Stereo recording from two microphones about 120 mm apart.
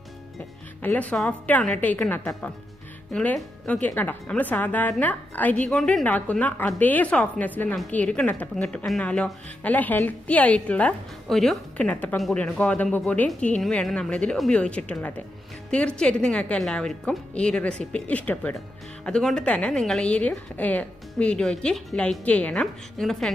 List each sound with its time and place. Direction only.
0.8 s a woman's voice: 10° left (ahead or behind)